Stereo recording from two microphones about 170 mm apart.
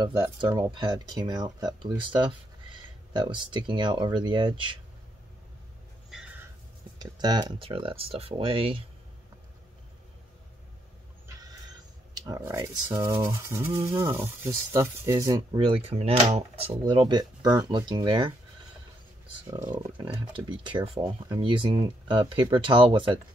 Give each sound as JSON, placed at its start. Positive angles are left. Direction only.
{"t": 0.0, "sound": "speech", "side_deg": -25}
{"t": 7.0, "sound": "speech", "side_deg": -25}
{"t": 12.1, "sound": "speech", "side_deg": -20}
{"t": 15.9, "sound": "speech", "side_deg": -35}
{"t": 19.7, "sound": "speech", "side_deg": -30}